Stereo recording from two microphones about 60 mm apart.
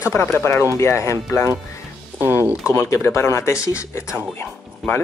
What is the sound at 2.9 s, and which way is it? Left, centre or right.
Speech, left.